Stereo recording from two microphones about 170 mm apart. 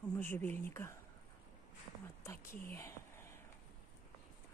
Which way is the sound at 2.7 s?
15° left (ahead or behind).